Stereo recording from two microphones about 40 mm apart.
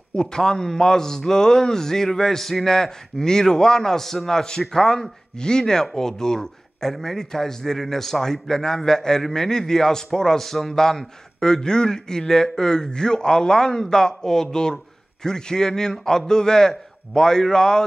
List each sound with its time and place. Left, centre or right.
0.1 s a man's voice: centre